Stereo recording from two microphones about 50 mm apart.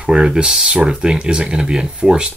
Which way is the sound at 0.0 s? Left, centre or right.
Centre.